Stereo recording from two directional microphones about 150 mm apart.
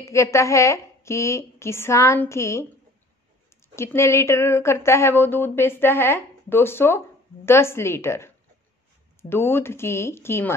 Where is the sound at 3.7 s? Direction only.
20° left (ahead or behind).